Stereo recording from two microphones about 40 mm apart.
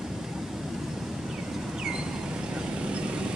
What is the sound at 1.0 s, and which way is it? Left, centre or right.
Vehicle, centre.